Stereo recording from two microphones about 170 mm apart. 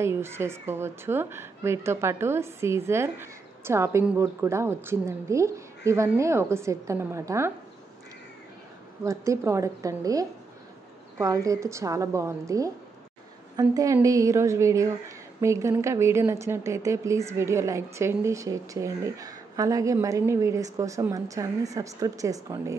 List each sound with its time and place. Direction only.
0.0 s speech: 15° right (ahead or behind)
9.0 s a woman's voice: 20° right (ahead or behind)